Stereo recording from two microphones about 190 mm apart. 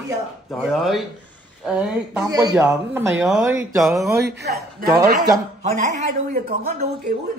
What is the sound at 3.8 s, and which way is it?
Speech, centre (ahead or behind).